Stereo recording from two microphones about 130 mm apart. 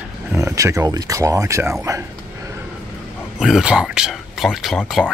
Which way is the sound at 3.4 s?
5° right (ahead or behind).